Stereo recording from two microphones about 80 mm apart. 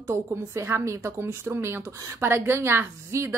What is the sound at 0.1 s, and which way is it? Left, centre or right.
A woman's voice, right.